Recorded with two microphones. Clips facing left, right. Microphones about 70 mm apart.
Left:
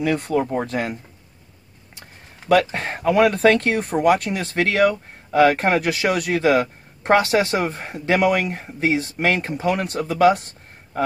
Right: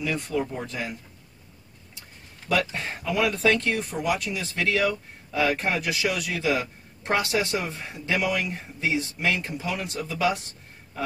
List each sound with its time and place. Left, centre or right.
0.0 s speech: left
2.7 s speech: left